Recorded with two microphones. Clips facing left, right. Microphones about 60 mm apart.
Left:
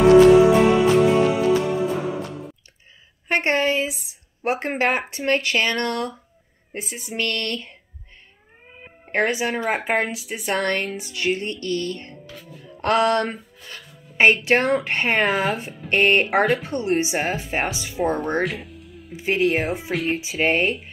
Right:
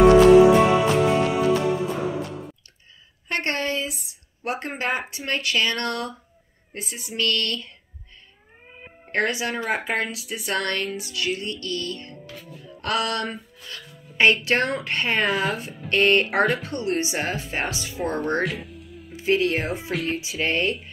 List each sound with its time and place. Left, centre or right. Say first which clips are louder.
0.0 s music: left 1 dB; centre
3.3 s a sound: left 5 dB; left
4.7 s speech: left 5 dB; left
8.7 s cat: even; centre
9.1 s speech: left 3 dB; left
18.4 s music: left 1 dB; centre
19.1 s speech: left 1 dB; left
19.9 s speech: left 2 dB; centre
20.2 s speech: left 4 dB; left